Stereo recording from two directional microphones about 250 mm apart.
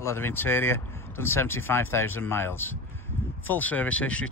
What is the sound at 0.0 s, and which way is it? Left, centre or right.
Speech, centre.